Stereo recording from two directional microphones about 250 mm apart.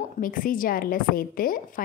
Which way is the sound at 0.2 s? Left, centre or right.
Left.